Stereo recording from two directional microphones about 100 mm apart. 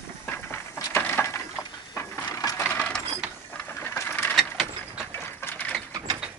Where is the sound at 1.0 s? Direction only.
25° left (ahead or behind).